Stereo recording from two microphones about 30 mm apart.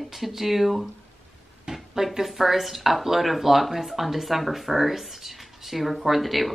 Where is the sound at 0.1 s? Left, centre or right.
Centre.